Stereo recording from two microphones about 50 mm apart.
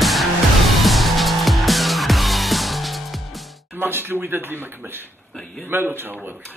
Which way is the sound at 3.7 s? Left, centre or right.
Right.